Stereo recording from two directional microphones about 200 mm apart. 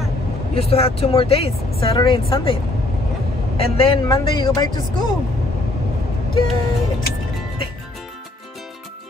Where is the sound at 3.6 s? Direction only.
30° left (ahead or behind).